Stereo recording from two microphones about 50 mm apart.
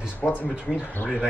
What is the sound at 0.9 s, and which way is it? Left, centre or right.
Speech, left.